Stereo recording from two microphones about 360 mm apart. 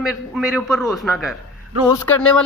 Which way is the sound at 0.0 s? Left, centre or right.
Centre.